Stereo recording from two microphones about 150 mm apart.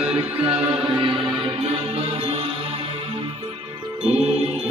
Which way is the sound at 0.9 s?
35° right (ahead or behind).